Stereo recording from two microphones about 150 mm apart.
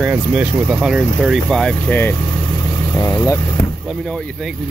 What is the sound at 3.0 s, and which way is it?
Speech, 20° left (ahead or behind).